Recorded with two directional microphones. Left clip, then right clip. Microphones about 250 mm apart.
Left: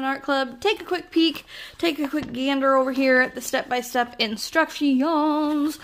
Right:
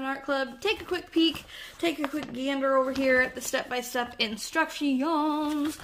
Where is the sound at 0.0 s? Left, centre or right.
Left.